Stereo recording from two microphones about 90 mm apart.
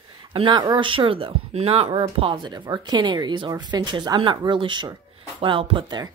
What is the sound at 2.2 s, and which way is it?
Speech, 60° right (ahead or behind).